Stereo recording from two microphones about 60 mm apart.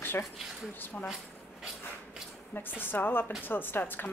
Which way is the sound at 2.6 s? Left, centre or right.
Left.